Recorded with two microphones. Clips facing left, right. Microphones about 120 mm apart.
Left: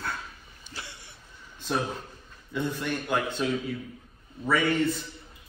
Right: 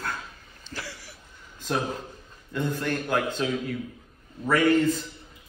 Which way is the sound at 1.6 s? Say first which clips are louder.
Right 1 dB; centre (ahead or behind).